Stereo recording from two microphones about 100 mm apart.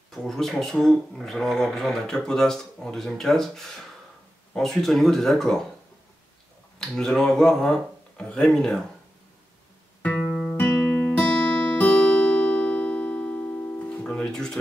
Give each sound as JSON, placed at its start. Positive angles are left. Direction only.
{"t": 0.1, "sound": "speech", "side_deg": 5}
{"t": 6.8, "sound": "speech", "side_deg": 5}
{"t": 10.0, "sound": "music", "side_deg": 15}